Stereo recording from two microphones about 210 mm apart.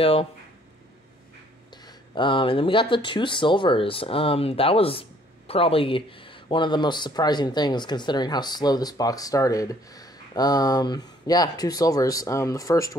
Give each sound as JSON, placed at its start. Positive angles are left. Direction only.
{"t": 0.0, "sound": "speech", "side_deg": 25}
{"t": 1.9, "sound": "speech", "side_deg": 25}